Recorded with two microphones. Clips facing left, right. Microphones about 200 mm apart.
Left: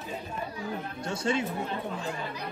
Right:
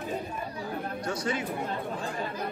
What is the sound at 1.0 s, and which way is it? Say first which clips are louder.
Speech: left 3 dB; 25° left (ahead or behind).